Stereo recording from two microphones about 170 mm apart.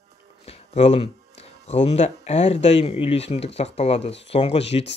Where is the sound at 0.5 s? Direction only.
35° left (ahead or behind).